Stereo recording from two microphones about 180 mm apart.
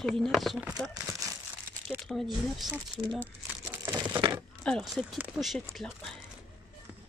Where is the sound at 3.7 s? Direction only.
15° right (ahead or behind).